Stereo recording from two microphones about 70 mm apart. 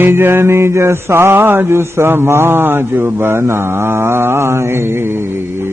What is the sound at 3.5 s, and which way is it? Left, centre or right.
Mantra, right.